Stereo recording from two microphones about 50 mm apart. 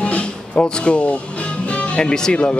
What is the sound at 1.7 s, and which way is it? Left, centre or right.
Speech, left.